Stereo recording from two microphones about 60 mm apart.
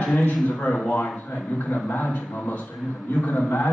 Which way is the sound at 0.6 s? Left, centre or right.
Left.